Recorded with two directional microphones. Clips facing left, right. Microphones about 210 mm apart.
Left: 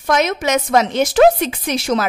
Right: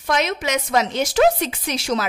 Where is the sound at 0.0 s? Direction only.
50° left (ahead or behind).